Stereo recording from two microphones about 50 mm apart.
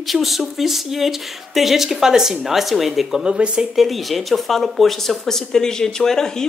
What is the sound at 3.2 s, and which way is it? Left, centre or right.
Speech, centre.